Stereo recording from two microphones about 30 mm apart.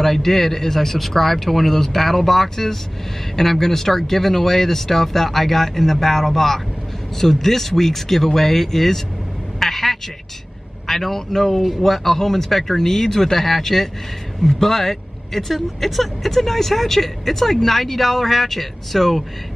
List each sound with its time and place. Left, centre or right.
0.0 s speech: centre
9.6 s a sound: centre
10.9 s speech: centre